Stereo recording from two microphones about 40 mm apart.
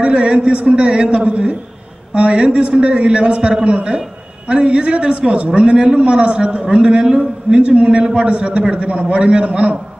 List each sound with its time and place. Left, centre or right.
0.0 s a man's voice: right